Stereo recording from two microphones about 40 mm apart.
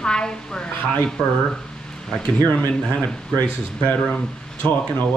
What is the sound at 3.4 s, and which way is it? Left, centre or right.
Speech, left.